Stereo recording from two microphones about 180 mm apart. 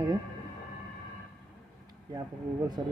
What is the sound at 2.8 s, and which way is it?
Speech, 30° right (ahead or behind).